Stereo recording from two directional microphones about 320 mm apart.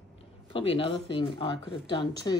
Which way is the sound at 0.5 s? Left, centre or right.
Centre.